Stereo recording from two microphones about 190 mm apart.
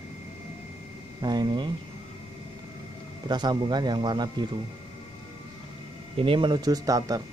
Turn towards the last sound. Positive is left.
turn(degrees=-20)  # may be behind; listen again after turning